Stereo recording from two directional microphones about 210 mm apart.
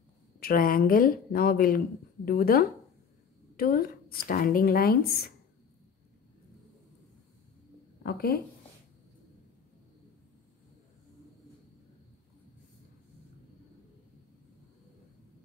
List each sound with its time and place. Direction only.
0.4 s speech: 45° left (ahead or behind)
8.0 s speech: 45° left (ahead or behind)